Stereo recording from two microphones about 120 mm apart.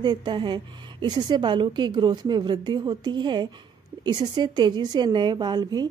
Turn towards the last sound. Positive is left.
turn(degrees=-35)  # may be behind; listen again after turning